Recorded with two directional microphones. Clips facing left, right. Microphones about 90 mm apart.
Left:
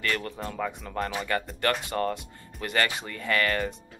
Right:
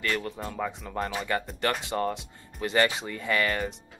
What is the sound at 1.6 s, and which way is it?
Speech, 20° right (ahead or behind).